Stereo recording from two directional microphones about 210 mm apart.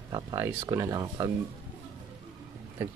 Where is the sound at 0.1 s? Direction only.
15° right (ahead or behind).